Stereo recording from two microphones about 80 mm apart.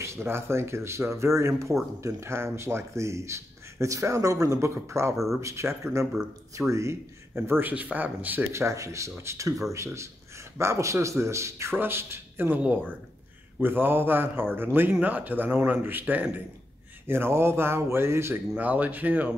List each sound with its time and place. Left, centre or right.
0.0 s speech: right
5.1 s speech: centre
5.4 s a man's voice: right
8.5 s speech: right
13.6 s a man's voice: right
18.6 s a man's voice: centre